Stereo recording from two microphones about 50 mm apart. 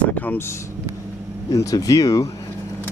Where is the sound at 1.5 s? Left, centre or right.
Left.